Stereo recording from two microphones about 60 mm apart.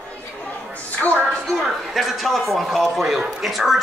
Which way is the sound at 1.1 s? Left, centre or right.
Centre.